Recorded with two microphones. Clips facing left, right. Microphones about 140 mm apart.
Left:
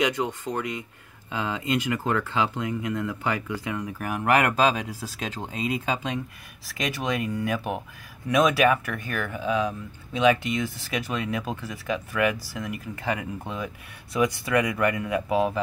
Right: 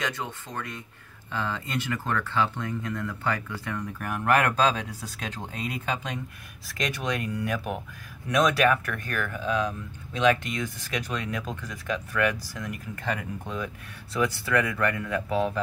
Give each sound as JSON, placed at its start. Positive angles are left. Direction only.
{"t": 0.0, "sound": "speech", "side_deg": 15}
{"t": 14.1, "sound": "speech", "side_deg": 15}